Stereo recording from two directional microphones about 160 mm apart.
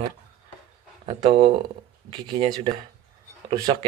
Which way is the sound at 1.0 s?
35° right (ahead or behind).